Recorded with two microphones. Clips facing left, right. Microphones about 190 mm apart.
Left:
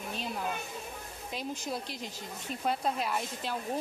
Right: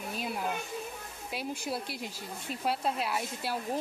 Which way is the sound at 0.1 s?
10° right (ahead or behind).